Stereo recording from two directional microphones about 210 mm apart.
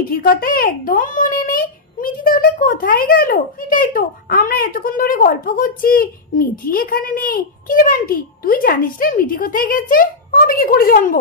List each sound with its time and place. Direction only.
0.1 s a child's voice: 45° left (ahead or behind)